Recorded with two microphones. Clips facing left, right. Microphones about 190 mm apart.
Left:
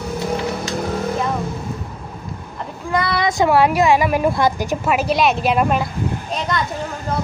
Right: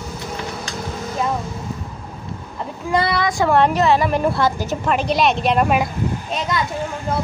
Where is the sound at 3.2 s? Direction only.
20° left (ahead or behind).